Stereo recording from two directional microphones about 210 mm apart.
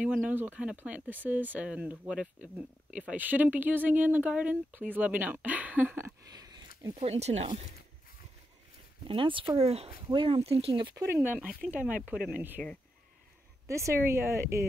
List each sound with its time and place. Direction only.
0.0 s speech: 5° right (ahead or behind)
7.0 s speech: 30° right (ahead or behind)
9.0 s speech: 25° right (ahead or behind)
11.1 s speech: 10° right (ahead or behind)
13.7 s speech: 15° right (ahead or behind)